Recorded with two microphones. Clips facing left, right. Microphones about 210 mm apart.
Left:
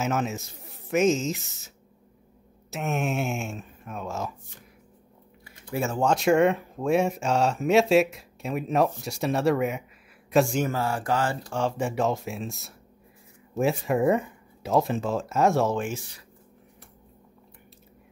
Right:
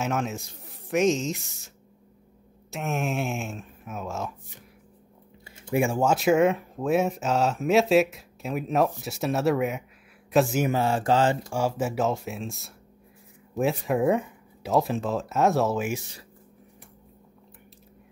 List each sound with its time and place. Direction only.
0.0 s speech: centre (ahead or behind)
2.7 s speech: centre (ahead or behind)
5.4 s a sound: 25° right (ahead or behind)
5.9 s speech: 5° right (ahead or behind)
10.7 s mantra: 20° right (ahead or behind)
11.5 s speech: 5° right (ahead or behind)